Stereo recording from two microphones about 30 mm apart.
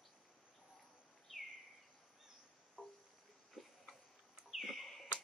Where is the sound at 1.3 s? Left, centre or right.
Centre.